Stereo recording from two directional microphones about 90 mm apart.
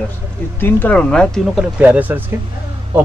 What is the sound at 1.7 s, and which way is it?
Speech, 15° right (ahead or behind).